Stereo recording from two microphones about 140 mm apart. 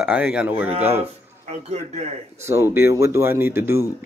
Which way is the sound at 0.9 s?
50° right (ahead or behind).